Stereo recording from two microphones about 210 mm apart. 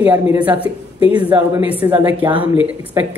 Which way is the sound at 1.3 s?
10° right (ahead or behind).